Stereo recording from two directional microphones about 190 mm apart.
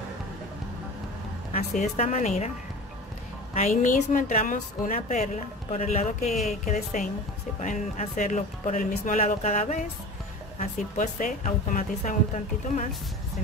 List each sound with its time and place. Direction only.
1.5 s a woman's voice: 40° left (ahead or behind)
3.5 s a woman's voice: 40° left (ahead or behind)